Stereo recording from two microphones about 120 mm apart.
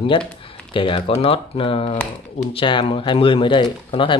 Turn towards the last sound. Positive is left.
turn(degrees=45)  # may be behind; listen again after turning